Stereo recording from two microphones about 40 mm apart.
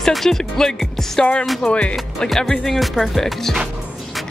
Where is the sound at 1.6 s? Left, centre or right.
Left.